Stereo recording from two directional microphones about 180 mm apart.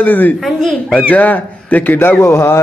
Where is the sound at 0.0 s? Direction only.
10° left (ahead or behind).